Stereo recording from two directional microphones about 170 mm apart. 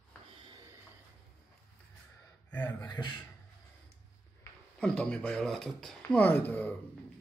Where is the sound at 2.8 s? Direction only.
25° left (ahead or behind).